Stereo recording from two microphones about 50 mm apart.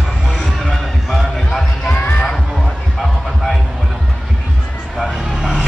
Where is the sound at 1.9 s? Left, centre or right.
Left.